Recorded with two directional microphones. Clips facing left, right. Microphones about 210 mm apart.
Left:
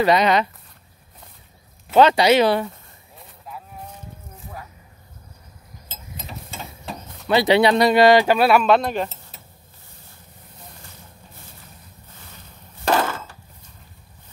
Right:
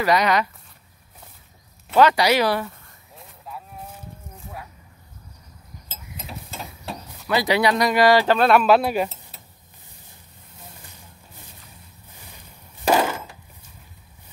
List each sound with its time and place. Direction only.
0.0 s speech: 25° left (ahead or behind)
2.0 s speech: 25° left (ahead or behind)
3.2 s cattle: centre (ahead or behind)
5.9 s mechanisms: centre (ahead or behind)
7.2 s speech: 25° left (ahead or behind); by 8.6 s 10° left (ahead or behind)
8.6 s speech: 5° right (ahead or behind)
12.8 s wood: 10° right (ahead or behind)